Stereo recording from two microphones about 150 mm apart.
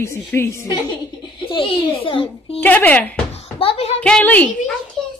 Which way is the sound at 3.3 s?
40° left (ahead or behind).